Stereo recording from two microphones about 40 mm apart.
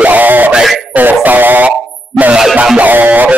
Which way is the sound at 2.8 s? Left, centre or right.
Right.